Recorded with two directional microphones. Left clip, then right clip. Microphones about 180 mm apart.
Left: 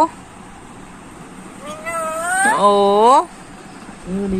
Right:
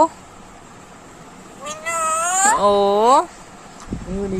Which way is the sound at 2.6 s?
15° right (ahead or behind).